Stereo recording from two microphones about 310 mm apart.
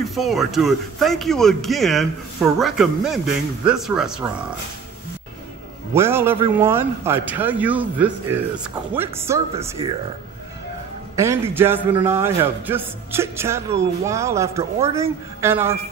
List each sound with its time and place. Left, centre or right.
0.1 s speech: centre
5.9 s a man's voice: centre
11.1 s a man's voice: centre